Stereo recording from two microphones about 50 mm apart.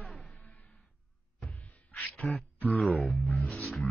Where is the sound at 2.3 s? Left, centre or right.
Centre.